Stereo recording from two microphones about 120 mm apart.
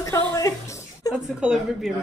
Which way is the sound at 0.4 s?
25° left (ahead or behind).